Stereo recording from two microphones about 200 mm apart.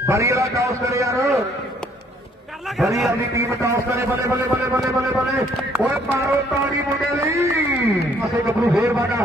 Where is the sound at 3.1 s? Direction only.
15° right (ahead or behind).